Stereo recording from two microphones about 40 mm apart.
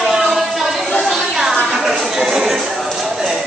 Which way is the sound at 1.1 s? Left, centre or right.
Centre.